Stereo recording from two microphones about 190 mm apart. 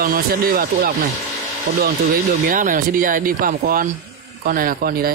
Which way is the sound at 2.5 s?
45° right (ahead or behind).